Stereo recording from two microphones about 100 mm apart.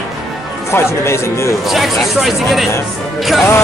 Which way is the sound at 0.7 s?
25° left (ahead or behind).